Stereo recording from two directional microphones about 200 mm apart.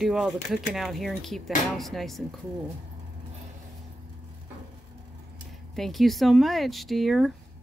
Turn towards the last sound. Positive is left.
turn(degrees=0)  # may be behind; listen again after turning